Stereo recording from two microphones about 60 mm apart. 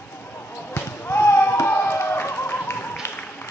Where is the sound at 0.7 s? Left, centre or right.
Left.